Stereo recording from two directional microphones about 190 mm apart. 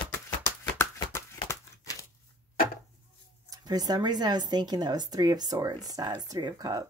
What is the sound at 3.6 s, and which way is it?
Speech, 20° right (ahead or behind).